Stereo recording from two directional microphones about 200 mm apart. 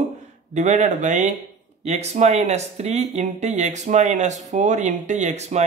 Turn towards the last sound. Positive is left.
turn(degrees=-35)  # may be behind; listen again after turning